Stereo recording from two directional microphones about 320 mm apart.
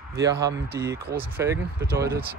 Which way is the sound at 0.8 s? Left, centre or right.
Centre.